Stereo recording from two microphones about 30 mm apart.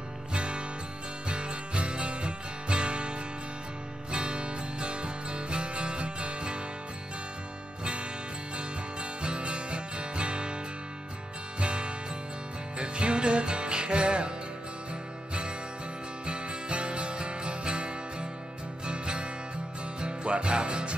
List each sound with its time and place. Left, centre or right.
0.3 s music: right
9.2 s music: right
11.6 s music: right
16.3 s music: right